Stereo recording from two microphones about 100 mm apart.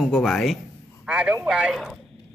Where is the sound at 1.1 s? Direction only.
10° right (ahead or behind).